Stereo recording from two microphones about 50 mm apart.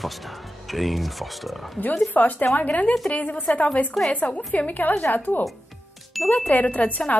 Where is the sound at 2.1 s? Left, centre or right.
Left.